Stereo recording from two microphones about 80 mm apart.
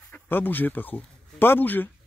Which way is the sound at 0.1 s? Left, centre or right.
Left.